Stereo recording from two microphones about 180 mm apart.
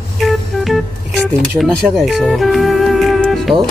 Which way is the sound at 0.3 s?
Centre (ahead or behind).